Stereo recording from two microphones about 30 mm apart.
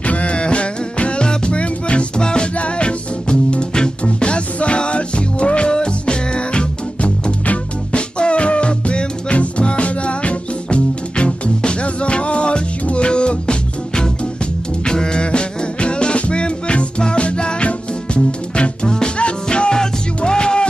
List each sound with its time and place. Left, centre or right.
0.0 s music: left
2.5 s music: left